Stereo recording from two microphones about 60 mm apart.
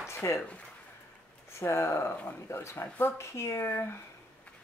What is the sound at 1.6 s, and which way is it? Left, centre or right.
Speech, left.